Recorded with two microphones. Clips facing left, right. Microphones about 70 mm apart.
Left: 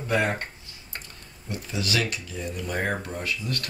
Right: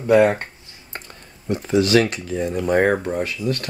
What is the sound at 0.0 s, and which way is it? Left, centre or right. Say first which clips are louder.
Speech: right 10 dB; right.